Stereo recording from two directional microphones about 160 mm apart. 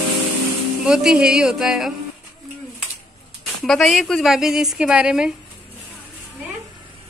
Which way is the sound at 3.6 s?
Centre (ahead or behind).